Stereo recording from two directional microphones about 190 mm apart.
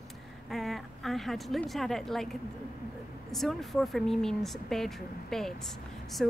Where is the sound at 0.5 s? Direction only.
Centre (ahead or behind).